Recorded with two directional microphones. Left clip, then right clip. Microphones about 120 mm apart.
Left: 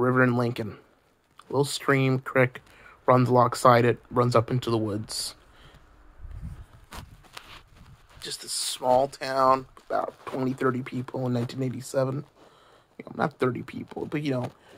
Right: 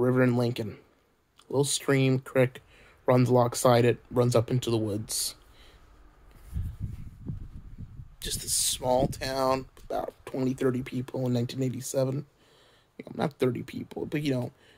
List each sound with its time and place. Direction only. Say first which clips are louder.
0.0 s speech: left 2 dB; 30° right (ahead or behind)
8.2 s speech: right 1 dB; 25° right (ahead or behind)